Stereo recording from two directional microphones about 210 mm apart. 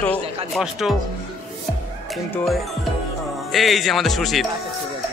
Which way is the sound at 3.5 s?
Centre (ahead or behind).